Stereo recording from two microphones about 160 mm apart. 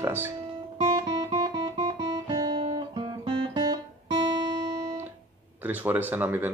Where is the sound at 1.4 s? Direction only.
25° right (ahead or behind).